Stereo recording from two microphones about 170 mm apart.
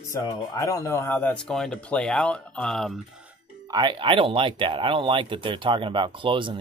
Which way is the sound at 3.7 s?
25° right (ahead or behind).